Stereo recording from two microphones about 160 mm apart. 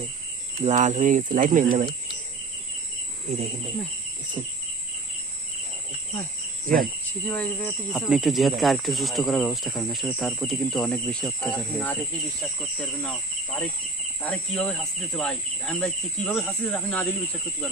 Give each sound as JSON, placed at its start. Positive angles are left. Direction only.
{"t": 0.6, "sound": "speech", "side_deg": -50}
{"t": 6.7, "sound": "speech", "side_deg": -60}
{"t": 7.2, "sound": "speech", "side_deg": 10}